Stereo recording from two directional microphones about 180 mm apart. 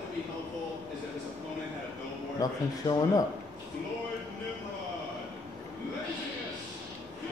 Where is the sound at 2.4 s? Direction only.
20° left (ahead or behind).